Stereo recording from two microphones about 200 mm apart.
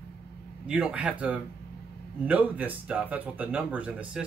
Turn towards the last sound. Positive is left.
turn(degrees=-5)  # may be behind; listen again after turning